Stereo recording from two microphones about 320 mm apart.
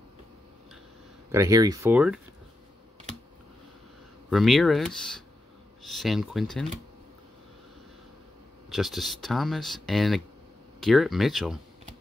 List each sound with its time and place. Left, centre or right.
1.3 s speech: centre
4.3 s speech: centre
8.6 s speech: centre